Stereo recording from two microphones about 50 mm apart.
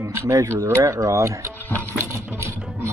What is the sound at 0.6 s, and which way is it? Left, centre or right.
Speech, right.